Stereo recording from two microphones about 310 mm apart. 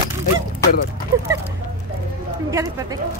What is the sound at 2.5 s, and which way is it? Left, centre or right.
Speech, centre.